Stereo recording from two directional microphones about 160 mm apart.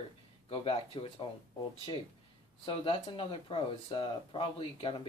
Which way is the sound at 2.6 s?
35° left (ahead or behind).